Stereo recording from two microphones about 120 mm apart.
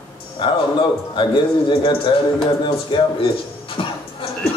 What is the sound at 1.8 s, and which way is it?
A man's voice, 50° left (ahead or behind).